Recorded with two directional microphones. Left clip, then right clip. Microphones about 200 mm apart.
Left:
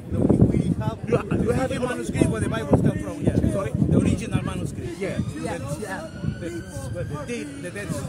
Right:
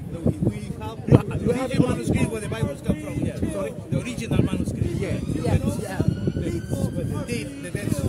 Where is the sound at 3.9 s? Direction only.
20° right (ahead or behind).